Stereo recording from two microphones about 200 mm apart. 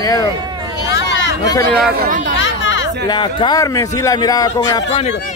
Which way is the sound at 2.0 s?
45° right (ahead or behind).